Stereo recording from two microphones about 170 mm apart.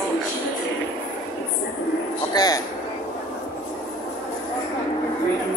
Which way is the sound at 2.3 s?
25° left (ahead or behind).